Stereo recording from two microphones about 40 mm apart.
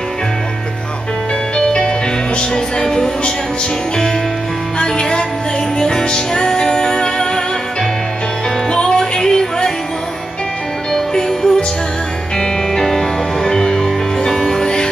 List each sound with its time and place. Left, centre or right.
1.6 s music: left
4.7 s music: centre
8.6 s music: left
10.9 s music: centre